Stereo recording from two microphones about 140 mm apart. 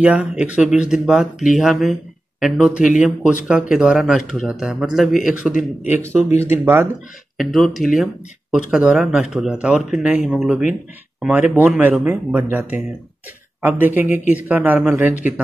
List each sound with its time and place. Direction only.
0.0 s speech: 5° right (ahead or behind)
7.3 s speech: centre (ahead or behind)